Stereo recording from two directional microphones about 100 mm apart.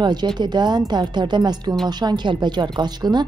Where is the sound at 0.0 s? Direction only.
45° right (ahead or behind).